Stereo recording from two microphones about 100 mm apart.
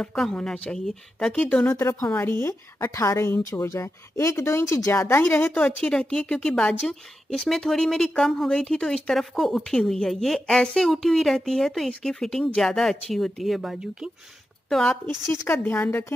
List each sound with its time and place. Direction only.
0.0 s a woman's voice: 5° left (ahead or behind)
1.7 s a woman's voice: 25° left (ahead or behind); by 14.1 s 5° right (ahead or behind)
14.7 s a woman's voice: 5° left (ahead or behind)
15.2 s a woman's voice: 20° left (ahead or behind)